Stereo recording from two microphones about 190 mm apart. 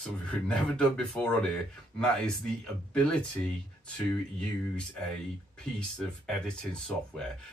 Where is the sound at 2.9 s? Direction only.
5° left (ahead or behind).